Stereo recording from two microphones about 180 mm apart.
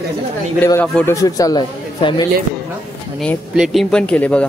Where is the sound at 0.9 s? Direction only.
15° left (ahead or behind).